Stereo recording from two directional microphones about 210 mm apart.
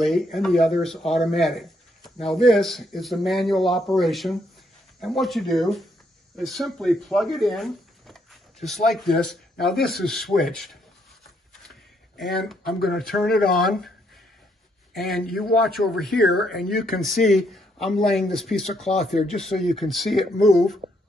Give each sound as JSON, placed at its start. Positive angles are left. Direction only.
{"t": 0.0, "sound": "speech", "side_deg": 0}
{"t": 11.5, "sound": "a sound", "side_deg": 0}
{"t": 13.0, "sound": "speech", "side_deg": 0}
{"t": 15.0, "sound": "speech", "side_deg": 0}